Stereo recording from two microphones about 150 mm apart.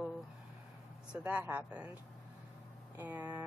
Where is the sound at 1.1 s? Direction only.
10° right (ahead or behind).